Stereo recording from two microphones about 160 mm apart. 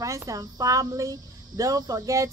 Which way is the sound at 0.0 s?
20° right (ahead or behind).